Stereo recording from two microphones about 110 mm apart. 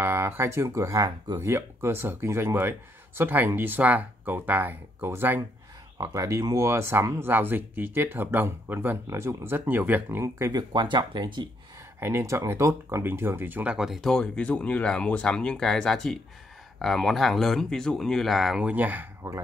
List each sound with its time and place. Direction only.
0.0 s speech: 20° right (ahead or behind); by 1.4 s 35° right (ahead or behind)
1.4 s speech: 20° right (ahead or behind)
5.9 s speech: 30° right (ahead or behind)
10.5 s speech: 45° right (ahead or behind)
12.0 s speech: 20° right (ahead or behind); by 18.7 s 5° right (ahead or behind)
18.7 s speech: 15° right (ahead or behind)